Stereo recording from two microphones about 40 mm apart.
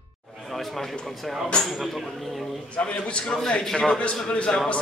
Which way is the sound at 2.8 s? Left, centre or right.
Left.